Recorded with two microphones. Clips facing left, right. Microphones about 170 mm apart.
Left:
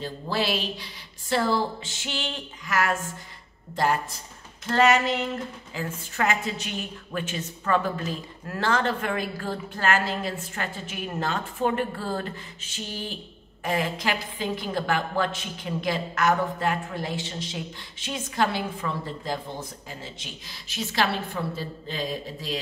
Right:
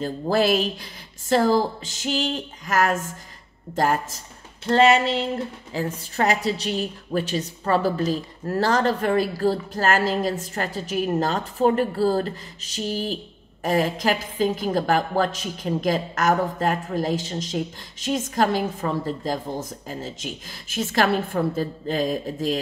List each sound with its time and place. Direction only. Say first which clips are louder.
0.0 s a woman's voice: right 7 dB; 45° right (ahead or behind)
4.6 s a woman's voice: right 4 dB; 30° right (ahead or behind); by 22.6 s 45° right (ahead or behind)